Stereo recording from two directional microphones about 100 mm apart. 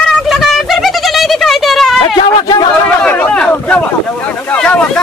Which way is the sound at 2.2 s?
50° left (ahead or behind).